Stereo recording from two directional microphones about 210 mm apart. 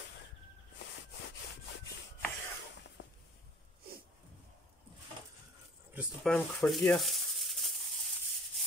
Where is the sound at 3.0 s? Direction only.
60° left (ahead or behind).